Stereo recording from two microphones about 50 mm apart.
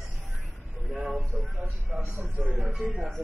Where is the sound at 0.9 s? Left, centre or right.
Centre.